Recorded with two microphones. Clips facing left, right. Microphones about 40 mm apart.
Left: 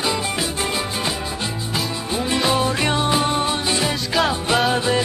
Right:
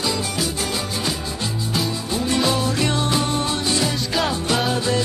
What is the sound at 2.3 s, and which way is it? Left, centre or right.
Music, centre.